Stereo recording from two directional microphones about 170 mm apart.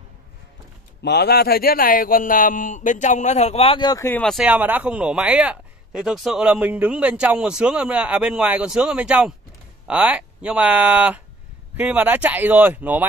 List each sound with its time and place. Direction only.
1.0 s a man's voice: 75° left (ahead or behind); by 4.1 s 25° left (ahead or behind)
4.1 s speech: 5° left (ahead or behind)